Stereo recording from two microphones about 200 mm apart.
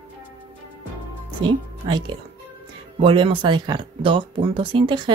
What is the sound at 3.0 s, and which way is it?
Speech, 25° right (ahead or behind).